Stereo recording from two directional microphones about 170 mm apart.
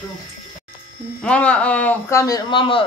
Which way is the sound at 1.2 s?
5° left (ahead or behind).